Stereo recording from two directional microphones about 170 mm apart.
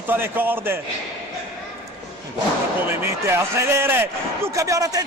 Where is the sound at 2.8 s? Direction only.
15° right (ahead or behind).